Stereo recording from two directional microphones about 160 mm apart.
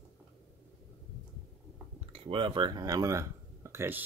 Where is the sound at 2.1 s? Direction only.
35° right (ahead or behind); by 4.0 s 15° right (ahead or behind).